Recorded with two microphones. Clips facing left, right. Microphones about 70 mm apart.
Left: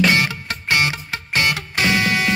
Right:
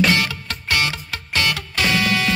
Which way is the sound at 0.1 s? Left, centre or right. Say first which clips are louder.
Left 1 dB; left.